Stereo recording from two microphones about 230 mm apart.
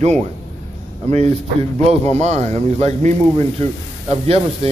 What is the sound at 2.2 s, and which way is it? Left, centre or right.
Speech, right.